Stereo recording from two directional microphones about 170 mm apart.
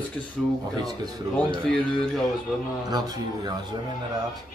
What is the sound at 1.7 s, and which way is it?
Speech, 5° left (ahead or behind).